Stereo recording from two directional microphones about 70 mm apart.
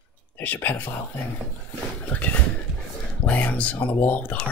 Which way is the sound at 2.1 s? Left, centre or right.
Centre.